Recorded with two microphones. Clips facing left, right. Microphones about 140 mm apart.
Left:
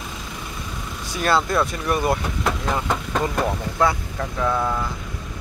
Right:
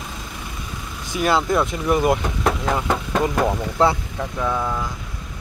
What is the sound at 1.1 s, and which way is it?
Speech, 15° right (ahead or behind).